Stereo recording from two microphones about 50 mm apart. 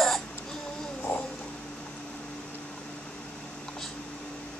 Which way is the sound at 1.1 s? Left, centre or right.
Left.